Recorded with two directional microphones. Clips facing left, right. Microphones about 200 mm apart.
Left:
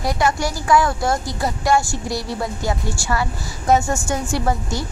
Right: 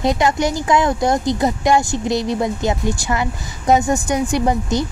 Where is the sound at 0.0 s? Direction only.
20° right (ahead or behind).